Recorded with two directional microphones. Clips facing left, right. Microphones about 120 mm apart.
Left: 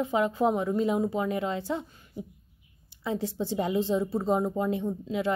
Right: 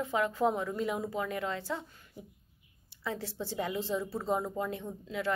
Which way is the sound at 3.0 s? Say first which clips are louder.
Left 7 dB; 15° left (ahead or behind).